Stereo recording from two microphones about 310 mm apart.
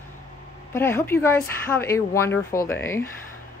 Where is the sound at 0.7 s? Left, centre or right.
Centre.